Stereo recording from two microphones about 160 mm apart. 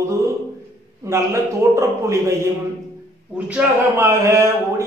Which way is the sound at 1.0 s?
20° right (ahead or behind).